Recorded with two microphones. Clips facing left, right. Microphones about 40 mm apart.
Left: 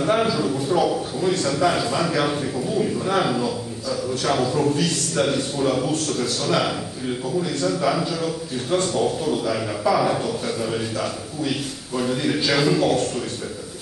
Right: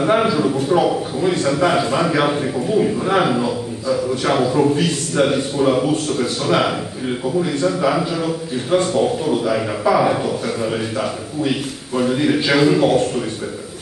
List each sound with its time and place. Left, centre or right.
0.0 s a man's voice: centre